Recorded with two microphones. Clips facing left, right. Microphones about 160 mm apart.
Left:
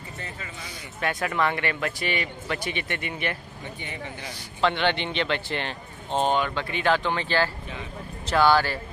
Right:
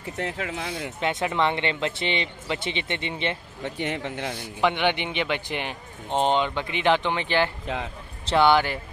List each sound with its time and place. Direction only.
0.2 s speech: 85° right; by 0.9 s 60° right (ahead or behind)
1.0 s speech: 20° right (ahead or behind)
3.6 s speech: 75° right (ahead or behind)
4.6 s speech: 15° right (ahead or behind)
7.6 s speech: 90° right
8.3 s speech: 20° right (ahead or behind)